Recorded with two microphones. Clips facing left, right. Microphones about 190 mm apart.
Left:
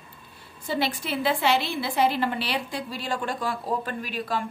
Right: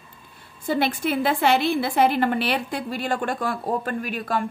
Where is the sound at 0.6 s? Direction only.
50° right (ahead or behind).